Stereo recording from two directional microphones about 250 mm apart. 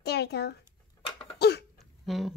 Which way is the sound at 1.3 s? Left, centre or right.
Left.